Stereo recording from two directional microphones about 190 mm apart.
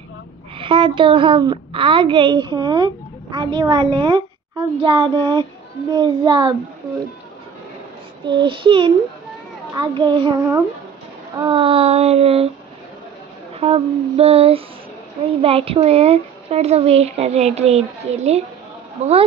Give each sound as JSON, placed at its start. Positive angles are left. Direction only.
{"t": 0.6, "sound": "a woman's voice", "side_deg": -25}
{"t": 8.3, "sound": "a woman's voice", "side_deg": -25}
{"t": 11.3, "sound": "speech", "side_deg": -25}
{"t": 13.6, "sound": "speech", "side_deg": -30}